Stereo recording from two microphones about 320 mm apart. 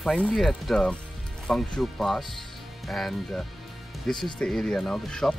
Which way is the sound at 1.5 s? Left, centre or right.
Centre.